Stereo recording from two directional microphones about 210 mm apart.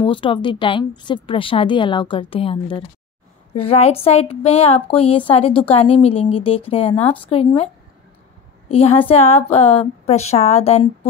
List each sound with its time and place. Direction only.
0.0 s speech: 25° left (ahead or behind)